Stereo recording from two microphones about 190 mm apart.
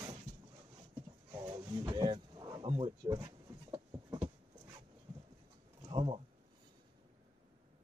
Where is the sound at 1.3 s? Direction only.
20° right (ahead or behind).